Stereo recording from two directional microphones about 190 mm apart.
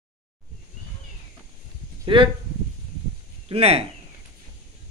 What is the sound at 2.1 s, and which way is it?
Speech, 25° right (ahead or behind).